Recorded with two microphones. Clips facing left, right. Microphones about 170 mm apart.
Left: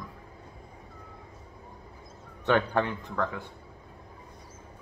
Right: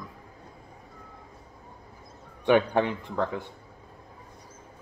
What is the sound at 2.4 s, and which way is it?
Speech, 15° right (ahead or behind).